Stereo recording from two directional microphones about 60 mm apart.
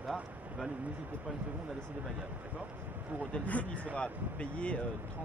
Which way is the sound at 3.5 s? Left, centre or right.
Left.